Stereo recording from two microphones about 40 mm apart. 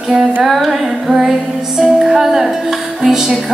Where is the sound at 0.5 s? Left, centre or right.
Centre.